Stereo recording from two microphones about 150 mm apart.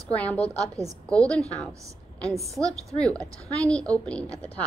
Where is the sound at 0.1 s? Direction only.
10° left (ahead or behind).